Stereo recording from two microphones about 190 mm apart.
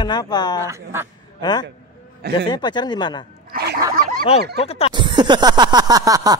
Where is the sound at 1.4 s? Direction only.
20° left (ahead or behind).